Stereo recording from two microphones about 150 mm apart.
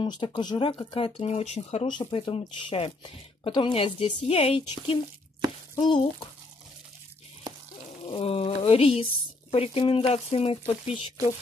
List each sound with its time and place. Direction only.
0.0 s speech: 35° left (ahead or behind)
1.9 s speech: 30° left (ahead or behind)
8.1 s speech: 40° left (ahead or behind)